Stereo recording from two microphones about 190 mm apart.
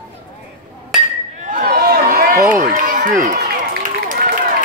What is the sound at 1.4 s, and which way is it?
Run, 45° right (ahead or behind).